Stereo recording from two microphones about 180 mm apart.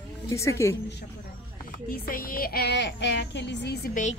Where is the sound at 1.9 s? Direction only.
55° left (ahead or behind); by 3.9 s 70° left (ahead or behind).